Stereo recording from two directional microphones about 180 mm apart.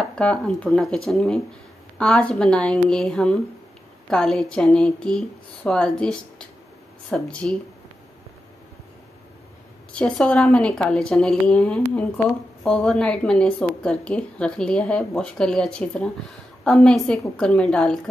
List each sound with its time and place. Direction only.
0.1 s a woman's voice: 5° left (ahead or behind)
9.9 s a woman's voice: 5° left (ahead or behind)